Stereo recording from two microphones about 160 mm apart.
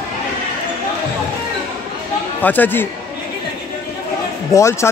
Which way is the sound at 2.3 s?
10° left (ahead or behind).